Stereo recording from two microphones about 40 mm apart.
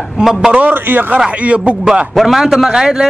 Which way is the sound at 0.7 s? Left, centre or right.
Right.